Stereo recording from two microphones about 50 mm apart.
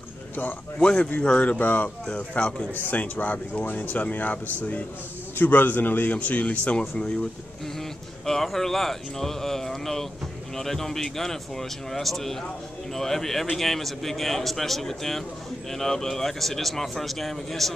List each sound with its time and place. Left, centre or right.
0.7 s speech: centre
1.2 s speech: left
1.6 s speech: left
2.1 s speech: left
8.3 s a man's voice: centre